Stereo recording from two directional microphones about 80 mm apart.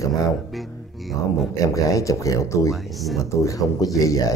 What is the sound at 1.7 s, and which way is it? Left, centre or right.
Speech, left.